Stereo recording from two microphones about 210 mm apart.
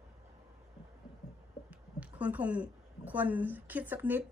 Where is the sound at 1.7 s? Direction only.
5° right (ahead or behind).